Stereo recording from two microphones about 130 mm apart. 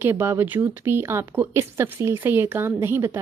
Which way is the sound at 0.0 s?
15° right (ahead or behind).